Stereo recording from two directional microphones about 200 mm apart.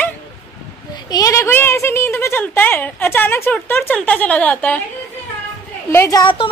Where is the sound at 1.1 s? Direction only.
15° left (ahead or behind).